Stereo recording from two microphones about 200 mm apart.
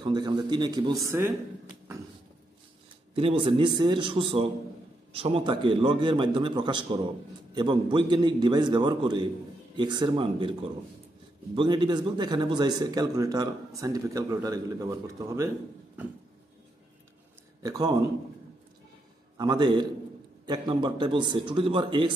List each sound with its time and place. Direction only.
0.0 s speech: 20° right (ahead or behind)
3.2 s speech: 25° right (ahead or behind)
11.5 s speech: 25° right (ahead or behind)
17.6 s speech: 20° right (ahead or behind)
19.3 s speech: 20° right (ahead or behind)